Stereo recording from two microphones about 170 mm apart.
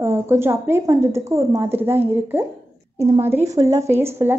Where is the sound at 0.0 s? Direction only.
15° right (ahead or behind).